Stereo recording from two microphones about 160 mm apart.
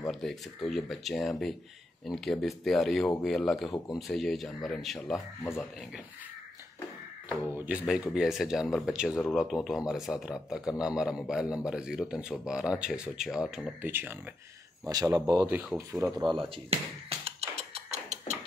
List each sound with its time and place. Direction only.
0.1 s speech: centre (ahead or behind)
7.2 s speech: 10° right (ahead or behind)
14.9 s speech: 20° right (ahead or behind)
15.4 s speech: centre (ahead or behind)
15.9 s speech: 20° right (ahead or behind)
16.3 s a sound: 35° right (ahead or behind)
17.9 s music: 45° right (ahead or behind)